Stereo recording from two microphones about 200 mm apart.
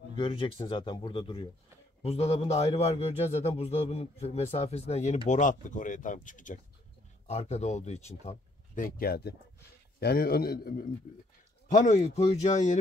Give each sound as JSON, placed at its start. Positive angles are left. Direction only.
{"t": 0.2, "sound": "a man's voice", "side_deg": 25}
{"t": 11.6, "sound": "a man's voice", "side_deg": 40}